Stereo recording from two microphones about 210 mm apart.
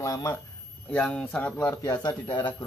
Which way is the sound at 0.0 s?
15° left (ahead or behind).